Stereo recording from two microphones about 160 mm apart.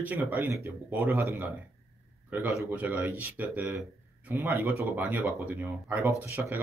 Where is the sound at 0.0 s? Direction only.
10° right (ahead or behind).